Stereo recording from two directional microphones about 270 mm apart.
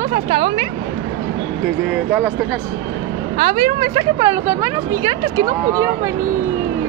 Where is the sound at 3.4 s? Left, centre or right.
Centre.